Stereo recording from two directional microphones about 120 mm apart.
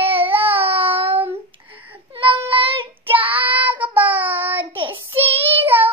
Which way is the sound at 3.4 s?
15° right (ahead or behind).